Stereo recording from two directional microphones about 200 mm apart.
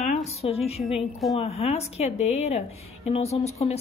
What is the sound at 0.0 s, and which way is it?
Speech, 35° left (ahead or behind).